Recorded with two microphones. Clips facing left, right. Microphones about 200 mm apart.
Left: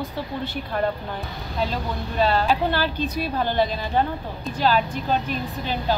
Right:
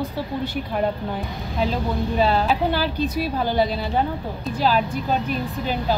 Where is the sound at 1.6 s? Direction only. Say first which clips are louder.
Right 4 dB; 10° right (ahead or behind).